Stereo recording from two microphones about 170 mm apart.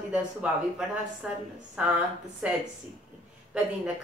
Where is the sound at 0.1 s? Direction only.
5° right (ahead or behind).